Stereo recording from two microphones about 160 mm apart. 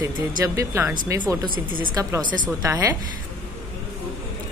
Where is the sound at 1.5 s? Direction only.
60° right (ahead or behind).